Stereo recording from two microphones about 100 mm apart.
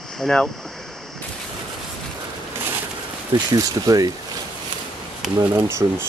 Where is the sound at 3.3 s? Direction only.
40° right (ahead or behind).